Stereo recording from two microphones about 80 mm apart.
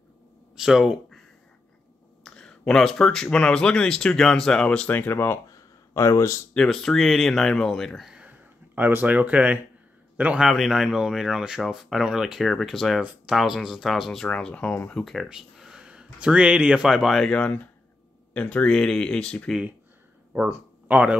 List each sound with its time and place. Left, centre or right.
0.6 s speech: centre
2.2 s speech: centre; by 5.4 s left
5.5 s a sound: left
6.5 s speech: centre
8.1 s a sound: centre
10.1 s a man's voice: centre
10.4 s speech: centre
14.3 s speech: centre
15.2 s speech: centre
17.3 s speech: centre
20.9 s a man's voice: centre